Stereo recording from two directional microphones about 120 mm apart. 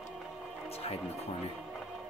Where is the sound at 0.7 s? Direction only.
55° left (ahead or behind).